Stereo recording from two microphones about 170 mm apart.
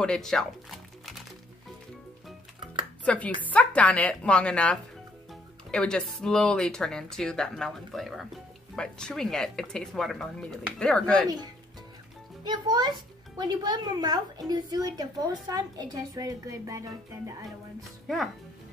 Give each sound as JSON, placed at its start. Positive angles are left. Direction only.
{"t": 0.0, "sound": "speech", "side_deg": 5}
{"t": 3.3, "sound": "speech", "side_deg": 10}
{"t": 12.4, "sound": "a woman's voice", "side_deg": -25}
{"t": 18.0, "sound": "speech", "side_deg": 0}